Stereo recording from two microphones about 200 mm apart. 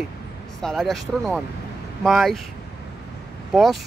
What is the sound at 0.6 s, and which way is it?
Speech, centre (ahead or behind).